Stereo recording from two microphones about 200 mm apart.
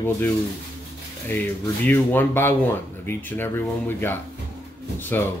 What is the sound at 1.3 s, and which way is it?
Speech, 10° left (ahead or behind).